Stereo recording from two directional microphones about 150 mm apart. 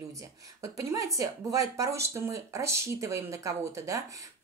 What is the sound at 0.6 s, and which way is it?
A woman's voice, 20° right (ahead or behind).